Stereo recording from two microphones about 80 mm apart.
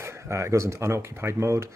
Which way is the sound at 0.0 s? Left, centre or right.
Right.